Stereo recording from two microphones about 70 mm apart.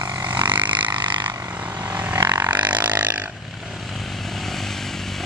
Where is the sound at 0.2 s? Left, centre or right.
Right.